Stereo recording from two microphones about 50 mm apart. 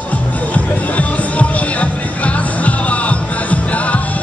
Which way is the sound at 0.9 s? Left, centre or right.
Left.